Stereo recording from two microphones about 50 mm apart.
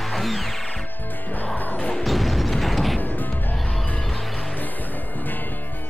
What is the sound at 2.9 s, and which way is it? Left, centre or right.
Music, left.